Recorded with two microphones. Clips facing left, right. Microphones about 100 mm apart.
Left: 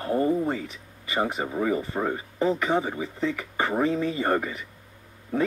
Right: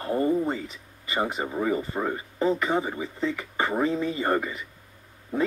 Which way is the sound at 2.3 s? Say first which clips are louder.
Right 1 dB; 15° left (ahead or behind).